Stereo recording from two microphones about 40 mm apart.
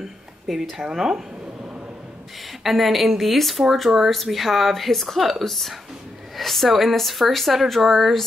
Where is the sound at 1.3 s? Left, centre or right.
Right.